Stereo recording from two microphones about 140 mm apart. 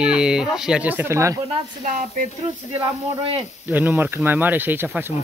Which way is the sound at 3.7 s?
15° right (ahead or behind).